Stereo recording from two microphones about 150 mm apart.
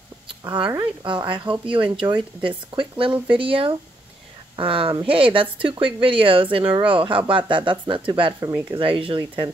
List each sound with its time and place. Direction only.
0.4 s speech: 30° right (ahead or behind)